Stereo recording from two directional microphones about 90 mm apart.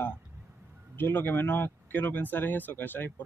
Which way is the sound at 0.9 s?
20° left (ahead or behind).